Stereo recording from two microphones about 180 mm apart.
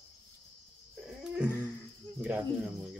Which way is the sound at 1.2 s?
5° right (ahead or behind).